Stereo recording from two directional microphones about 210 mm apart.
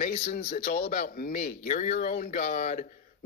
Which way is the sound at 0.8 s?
35° left (ahead or behind).